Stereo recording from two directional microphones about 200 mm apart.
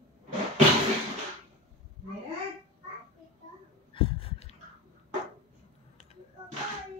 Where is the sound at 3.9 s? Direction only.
25° left (ahead or behind).